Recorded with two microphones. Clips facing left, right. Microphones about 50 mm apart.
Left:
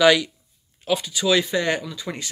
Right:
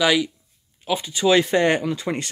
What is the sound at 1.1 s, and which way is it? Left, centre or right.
Speech, right.